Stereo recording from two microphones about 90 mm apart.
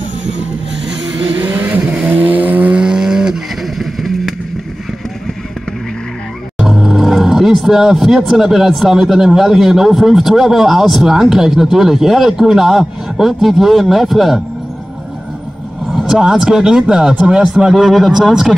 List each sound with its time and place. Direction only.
1.4 s vehicle: 25° right (ahead or behind); by 4.4 s centre (ahead or behind)
6.6 s speech: 5° right (ahead or behind)
15.9 s speech: 5° right (ahead or behind)